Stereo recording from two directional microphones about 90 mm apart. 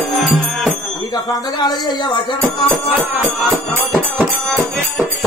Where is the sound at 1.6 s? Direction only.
60° left (ahead or behind).